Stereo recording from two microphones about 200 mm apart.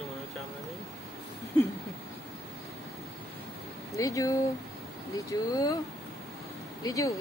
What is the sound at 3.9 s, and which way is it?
Speech, 15° left (ahead or behind).